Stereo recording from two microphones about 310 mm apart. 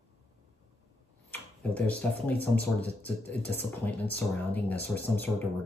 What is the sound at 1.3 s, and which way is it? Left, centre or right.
Speech, centre.